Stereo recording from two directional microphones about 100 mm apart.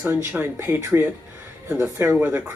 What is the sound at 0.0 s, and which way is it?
Speech, 15° right (ahead or behind).